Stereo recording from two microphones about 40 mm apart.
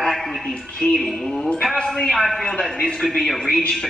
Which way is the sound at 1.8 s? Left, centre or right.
Left.